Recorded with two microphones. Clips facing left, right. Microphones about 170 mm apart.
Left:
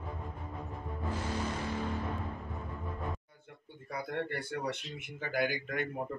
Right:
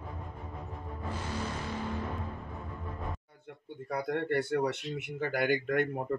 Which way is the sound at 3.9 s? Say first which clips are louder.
Right 6 dB; 65° right (ahead or behind).